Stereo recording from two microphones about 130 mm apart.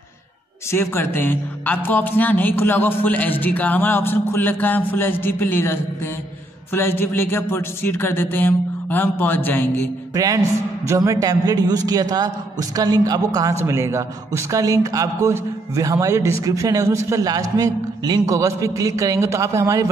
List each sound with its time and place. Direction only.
0.7 s a man's voice: 20° left (ahead or behind)
10.1 s a man's voice: 25° right (ahead or behind)